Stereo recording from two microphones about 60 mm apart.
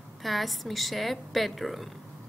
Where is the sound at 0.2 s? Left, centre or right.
Centre.